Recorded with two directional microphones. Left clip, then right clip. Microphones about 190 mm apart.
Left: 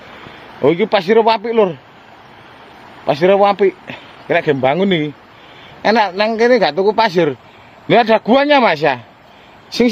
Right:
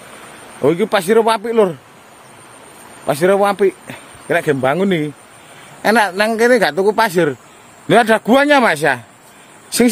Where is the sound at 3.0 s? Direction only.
5° right (ahead or behind).